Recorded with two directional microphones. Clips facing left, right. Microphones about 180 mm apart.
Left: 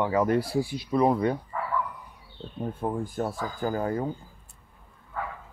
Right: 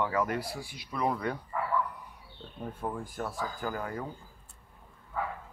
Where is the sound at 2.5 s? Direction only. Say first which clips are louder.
Left 6 dB; 30° left (ahead or behind).